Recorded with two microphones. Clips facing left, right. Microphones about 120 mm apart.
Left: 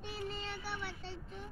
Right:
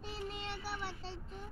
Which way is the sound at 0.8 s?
30° right (ahead or behind).